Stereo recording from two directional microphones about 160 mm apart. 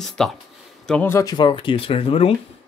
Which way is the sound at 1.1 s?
25° left (ahead or behind).